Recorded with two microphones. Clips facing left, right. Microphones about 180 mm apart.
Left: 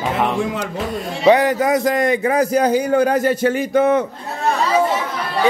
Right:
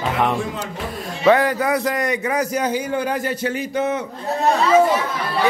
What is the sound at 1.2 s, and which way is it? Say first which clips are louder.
A man's voice: left 2 dB; 20° left (ahead or behind).